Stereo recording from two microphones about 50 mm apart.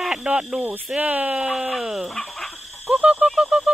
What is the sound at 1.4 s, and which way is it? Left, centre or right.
Speech, centre.